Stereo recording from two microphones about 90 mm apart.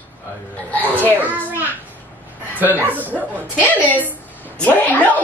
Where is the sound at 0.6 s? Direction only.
20° left (ahead or behind).